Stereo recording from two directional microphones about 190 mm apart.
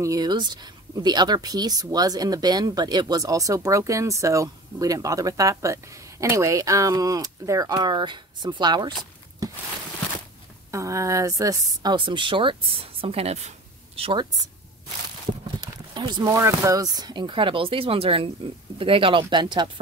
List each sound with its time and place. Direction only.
0.0 s speech: 20° right (ahead or behind)
10.7 s speech: 15° right (ahead or behind)
15.9 s speech: 25° right (ahead or behind)